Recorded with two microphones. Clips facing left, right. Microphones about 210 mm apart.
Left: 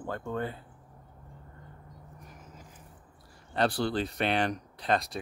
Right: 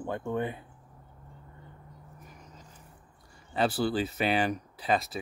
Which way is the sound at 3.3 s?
5° right (ahead or behind).